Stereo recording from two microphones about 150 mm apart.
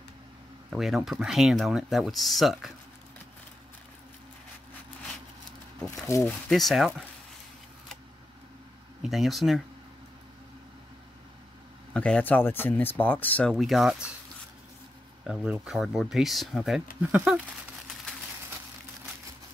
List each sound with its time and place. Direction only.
0.7 s speech: centre (ahead or behind)
6.0 s speech: 20° left (ahead or behind)
6.5 s speech: centre (ahead or behind)
9.0 s speech: centre (ahead or behind)
11.9 s speech: 10° left (ahead or behind)
15.6 s speech: 5° right (ahead or behind)